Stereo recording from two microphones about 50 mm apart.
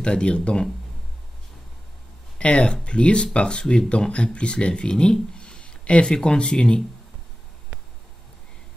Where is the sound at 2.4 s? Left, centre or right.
Centre.